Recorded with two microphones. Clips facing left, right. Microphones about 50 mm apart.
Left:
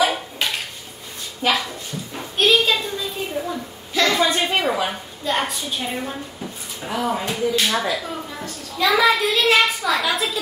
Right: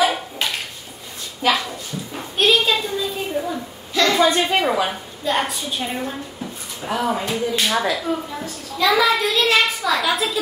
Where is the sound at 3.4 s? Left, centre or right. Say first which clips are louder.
Right 1 dB; centre.